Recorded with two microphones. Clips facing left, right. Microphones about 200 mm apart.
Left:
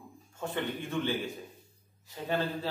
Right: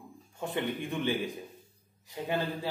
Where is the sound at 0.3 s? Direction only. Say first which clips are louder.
Right 1 dB; 15° right (ahead or behind).